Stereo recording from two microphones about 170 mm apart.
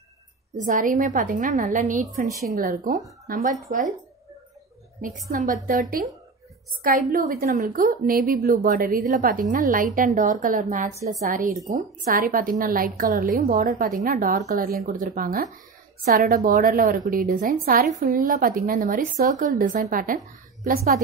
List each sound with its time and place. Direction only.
0.6 s a woman's voice: 50° right (ahead or behind)
2.4 s a woman's voice: 60° right (ahead or behind)
5.0 s a woman's voice: 55° right (ahead or behind)